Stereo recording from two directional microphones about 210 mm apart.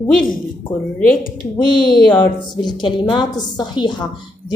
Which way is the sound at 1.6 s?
20° left (ahead or behind).